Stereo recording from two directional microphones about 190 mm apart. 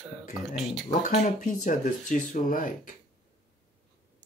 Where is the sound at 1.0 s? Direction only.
40° left (ahead or behind).